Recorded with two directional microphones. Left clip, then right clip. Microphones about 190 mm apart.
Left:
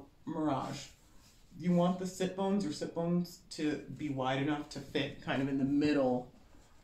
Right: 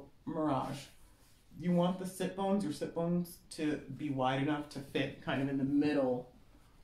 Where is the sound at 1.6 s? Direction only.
20° right (ahead or behind).